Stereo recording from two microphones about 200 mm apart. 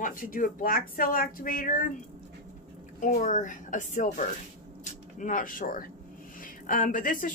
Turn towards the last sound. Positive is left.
turn(degrees=45)  # may be behind; listen again after turning